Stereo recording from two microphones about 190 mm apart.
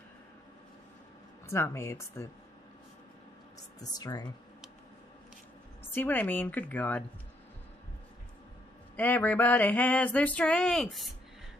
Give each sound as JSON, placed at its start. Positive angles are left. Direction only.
{"t": 1.5, "sound": "male singing", "side_deg": 15}
{"t": 3.8, "sound": "speech", "side_deg": 20}
{"t": 5.9, "sound": "male singing", "side_deg": 10}
{"t": 8.9, "sound": "male singing", "side_deg": 10}